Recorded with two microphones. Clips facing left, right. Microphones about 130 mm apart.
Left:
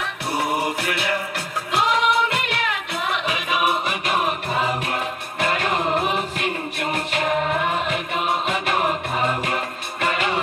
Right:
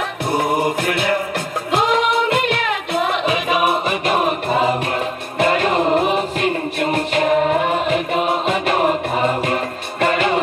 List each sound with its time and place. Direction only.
0.4 s music: 45° right (ahead or behind)